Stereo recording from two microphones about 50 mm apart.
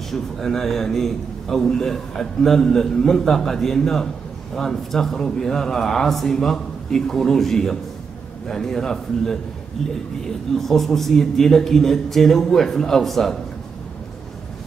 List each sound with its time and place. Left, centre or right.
0.1 s a man's voice: centre